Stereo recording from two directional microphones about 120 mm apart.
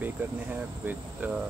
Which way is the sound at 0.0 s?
15° right (ahead or behind).